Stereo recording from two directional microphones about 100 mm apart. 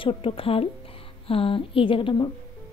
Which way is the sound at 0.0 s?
65° left (ahead or behind).